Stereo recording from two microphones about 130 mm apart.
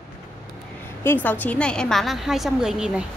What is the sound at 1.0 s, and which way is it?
A woman's voice, 15° left (ahead or behind).